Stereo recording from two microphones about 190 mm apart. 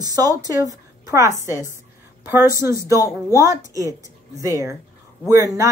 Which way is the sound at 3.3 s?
20° right (ahead or behind).